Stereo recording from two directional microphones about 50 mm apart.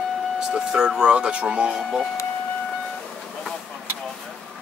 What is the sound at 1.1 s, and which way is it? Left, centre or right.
Speech, right.